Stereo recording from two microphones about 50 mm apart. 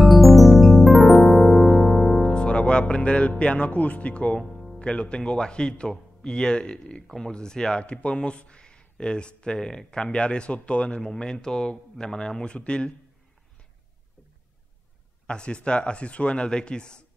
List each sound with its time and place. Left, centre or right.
0.0 s music: centre
2.2 s speech: centre
4.4 s music: centre
4.7 s speech: left
15.2 s speech: centre